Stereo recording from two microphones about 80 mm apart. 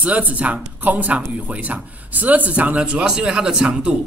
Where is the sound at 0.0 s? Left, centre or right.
Centre.